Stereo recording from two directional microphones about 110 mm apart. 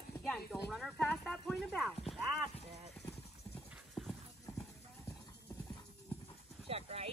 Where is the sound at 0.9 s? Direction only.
10° left (ahead or behind).